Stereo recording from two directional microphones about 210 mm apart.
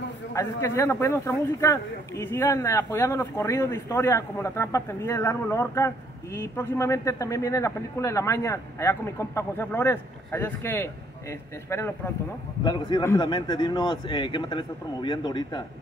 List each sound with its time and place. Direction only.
0.3 s a man's voice: 15° left (ahead or behind)